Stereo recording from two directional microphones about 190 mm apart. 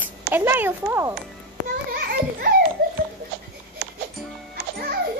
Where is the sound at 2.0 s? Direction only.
55° right (ahead or behind).